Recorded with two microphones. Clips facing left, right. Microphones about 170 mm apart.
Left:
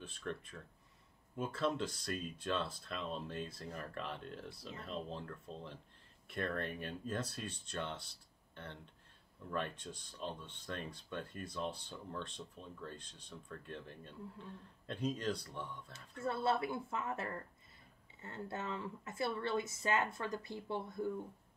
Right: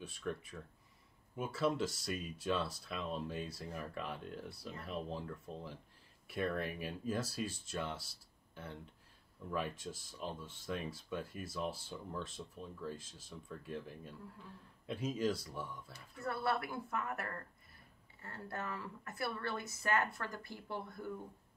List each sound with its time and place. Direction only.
0.2 s speech: 5° right (ahead or behind)
16.2 s speech: 20° left (ahead or behind)